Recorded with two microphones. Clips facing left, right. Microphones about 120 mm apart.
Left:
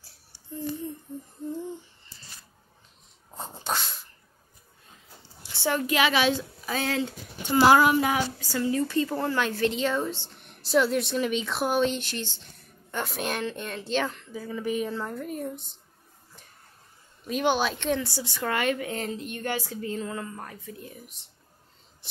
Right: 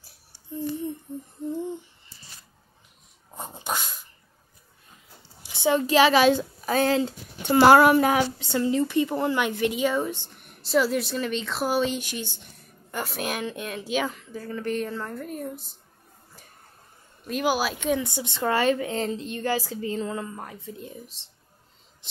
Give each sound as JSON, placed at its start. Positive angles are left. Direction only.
{"t": 3.3, "sound": "dog", "side_deg": -15}
{"t": 5.5, "sound": "a sound", "side_deg": -20}
{"t": 5.9, "sound": "a woman's voice", "side_deg": -40}
{"t": 7.4, "sound": "speech", "side_deg": -60}
{"t": 8.4, "sound": "a woman's voice", "side_deg": -25}
{"t": 17.3, "sound": "a woman's voice", "side_deg": -5}
{"t": 18.0, "sound": "a woman's voice", "side_deg": -20}